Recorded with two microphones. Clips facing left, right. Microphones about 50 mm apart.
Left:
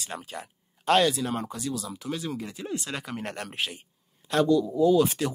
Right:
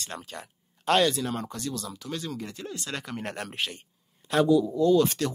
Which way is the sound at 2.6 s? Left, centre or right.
Centre.